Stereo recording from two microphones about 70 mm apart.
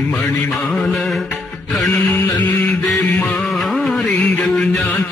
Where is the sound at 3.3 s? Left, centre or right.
Centre.